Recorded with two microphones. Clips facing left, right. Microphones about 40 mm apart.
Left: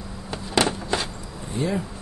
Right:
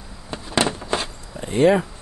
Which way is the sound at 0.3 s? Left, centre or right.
Centre.